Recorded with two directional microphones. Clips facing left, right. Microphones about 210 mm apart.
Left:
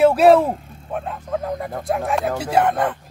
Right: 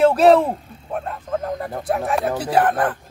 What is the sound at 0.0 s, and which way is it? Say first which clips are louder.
Speech: left 1 dB; 10° left (ahead or behind).